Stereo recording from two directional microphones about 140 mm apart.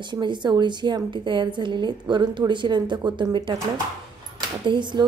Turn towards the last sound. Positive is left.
turn(degrees=-35)  # may be behind; listen again after turning